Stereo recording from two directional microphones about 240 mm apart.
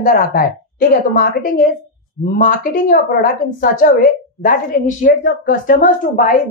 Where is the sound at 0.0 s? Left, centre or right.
Left.